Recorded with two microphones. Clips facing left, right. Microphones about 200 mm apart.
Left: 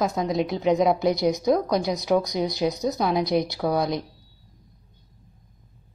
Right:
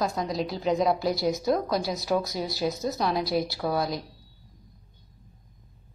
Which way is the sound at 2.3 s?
20° left (ahead or behind).